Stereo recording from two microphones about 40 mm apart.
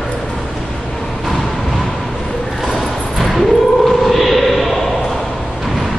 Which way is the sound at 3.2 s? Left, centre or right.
Centre.